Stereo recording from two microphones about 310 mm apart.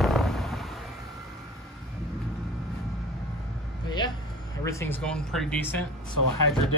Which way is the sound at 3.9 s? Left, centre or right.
Centre.